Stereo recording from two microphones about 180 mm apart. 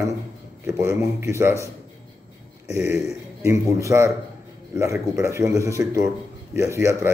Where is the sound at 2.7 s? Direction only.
15° right (ahead or behind).